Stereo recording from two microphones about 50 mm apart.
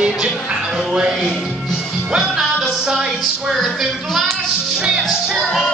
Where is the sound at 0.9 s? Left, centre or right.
Centre.